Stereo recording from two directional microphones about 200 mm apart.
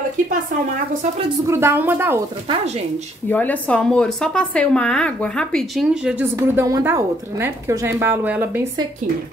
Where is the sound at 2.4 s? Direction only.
30° right (ahead or behind).